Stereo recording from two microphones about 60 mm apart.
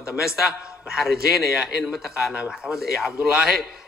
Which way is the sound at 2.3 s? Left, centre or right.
Centre.